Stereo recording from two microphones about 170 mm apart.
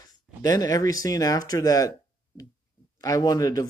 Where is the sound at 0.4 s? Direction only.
20° left (ahead or behind).